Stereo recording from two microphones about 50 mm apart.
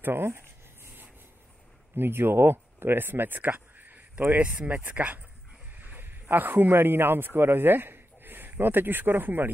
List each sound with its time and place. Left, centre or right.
0.0 s speech: right
2.0 s speech: right
4.4 s a man's voice: right